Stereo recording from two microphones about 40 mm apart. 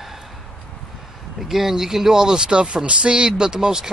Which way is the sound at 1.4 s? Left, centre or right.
Centre.